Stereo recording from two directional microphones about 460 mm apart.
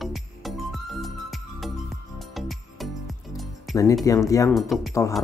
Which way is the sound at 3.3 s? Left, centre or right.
Centre.